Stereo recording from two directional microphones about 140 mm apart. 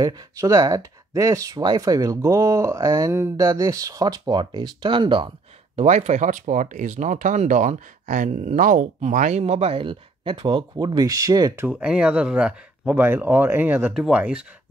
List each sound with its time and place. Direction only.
0.0 s speech: 25° right (ahead or behind)
5.8 s speech: 55° right (ahead or behind); by 11.5 s 25° right (ahead or behind)
11.5 s speech: 10° right (ahead or behind)